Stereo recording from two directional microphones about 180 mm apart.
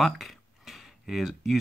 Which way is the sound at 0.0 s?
Centre (ahead or behind).